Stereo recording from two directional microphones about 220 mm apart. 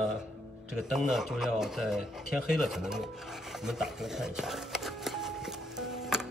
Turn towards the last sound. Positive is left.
turn(degrees=0)  # may be behind; listen again after turning